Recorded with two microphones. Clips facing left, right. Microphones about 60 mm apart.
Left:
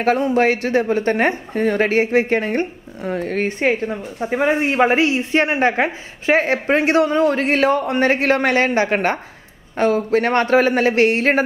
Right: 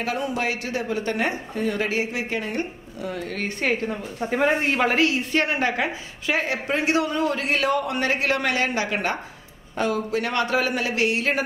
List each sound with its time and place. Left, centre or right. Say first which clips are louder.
0.0 s a woman's voice: left 10 dB; left
3.5 s a woman's voice: left 2 dB; left
4.2 s speech: left 4 dB; centre
4.7 s a woman's voice: left 5 dB; left